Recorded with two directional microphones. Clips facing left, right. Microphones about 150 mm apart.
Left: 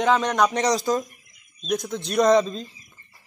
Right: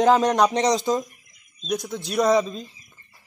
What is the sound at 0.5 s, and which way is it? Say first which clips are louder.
Speech: right 1 dB; 20° right (ahead or behind).